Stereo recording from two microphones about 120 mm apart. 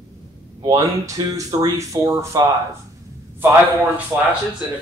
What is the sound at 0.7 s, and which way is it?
Speech, 25° right (ahead or behind).